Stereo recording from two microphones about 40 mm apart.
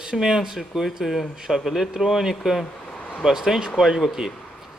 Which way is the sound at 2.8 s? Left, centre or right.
Left.